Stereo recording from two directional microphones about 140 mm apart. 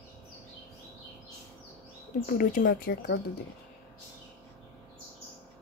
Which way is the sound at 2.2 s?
75° left (ahead or behind).